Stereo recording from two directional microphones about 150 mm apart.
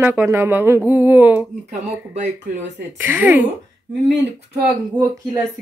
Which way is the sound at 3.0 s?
10° right (ahead or behind).